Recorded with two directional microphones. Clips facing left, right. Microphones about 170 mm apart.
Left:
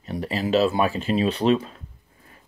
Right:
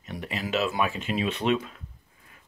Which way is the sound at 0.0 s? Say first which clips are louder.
Left 7 dB; 35° left (ahead or behind).